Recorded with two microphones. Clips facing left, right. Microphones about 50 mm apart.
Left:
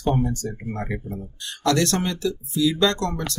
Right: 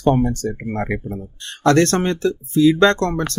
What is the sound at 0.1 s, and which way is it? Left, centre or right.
Speech, right.